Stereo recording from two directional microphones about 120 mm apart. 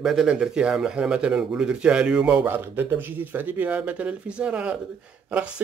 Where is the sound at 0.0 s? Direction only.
5° right (ahead or behind).